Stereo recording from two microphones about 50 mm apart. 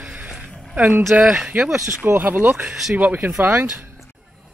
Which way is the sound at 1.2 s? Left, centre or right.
Centre.